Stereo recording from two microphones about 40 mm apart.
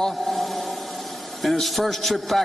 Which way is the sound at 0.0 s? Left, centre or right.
Centre.